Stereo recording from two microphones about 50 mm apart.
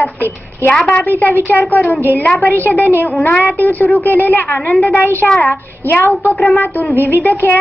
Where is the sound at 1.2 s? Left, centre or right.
Left.